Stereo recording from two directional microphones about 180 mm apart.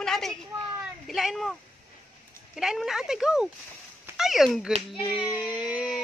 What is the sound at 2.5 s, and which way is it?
Speech, centre (ahead or behind).